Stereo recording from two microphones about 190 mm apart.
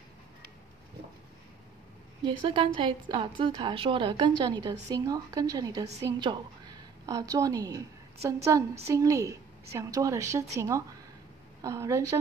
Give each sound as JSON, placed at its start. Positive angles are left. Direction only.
{"t": 2.2, "sound": "a woman's voice", "side_deg": -25}